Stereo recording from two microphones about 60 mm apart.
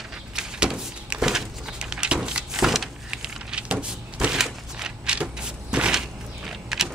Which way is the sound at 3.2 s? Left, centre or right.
Centre.